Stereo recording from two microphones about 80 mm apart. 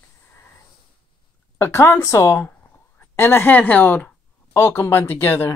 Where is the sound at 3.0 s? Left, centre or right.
Left.